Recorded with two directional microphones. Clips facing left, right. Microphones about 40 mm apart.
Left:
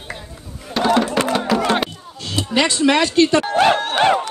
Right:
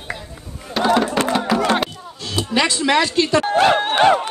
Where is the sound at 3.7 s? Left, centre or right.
Centre.